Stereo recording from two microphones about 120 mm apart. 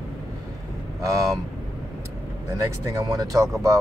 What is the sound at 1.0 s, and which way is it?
Speech, 25° right (ahead or behind).